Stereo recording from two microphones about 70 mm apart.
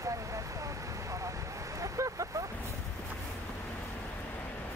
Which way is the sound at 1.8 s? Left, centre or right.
Right.